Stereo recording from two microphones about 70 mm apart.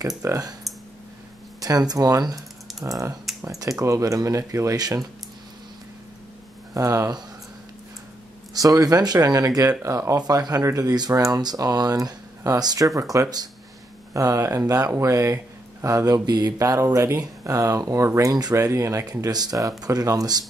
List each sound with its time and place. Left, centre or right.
0.2 s speech: right
1.6 s speech: right
2.8 s speech: right
4.7 s speech: right
6.7 s speech: right
8.5 s speech: right
9.8 s speech: right
10.1 s speech: right
10.6 s speech: right
14.1 s speech: right
16.1 s speech: right
16.5 s speech: right